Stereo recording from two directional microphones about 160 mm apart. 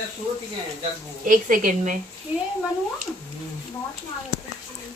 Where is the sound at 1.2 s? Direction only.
55° right (ahead or behind).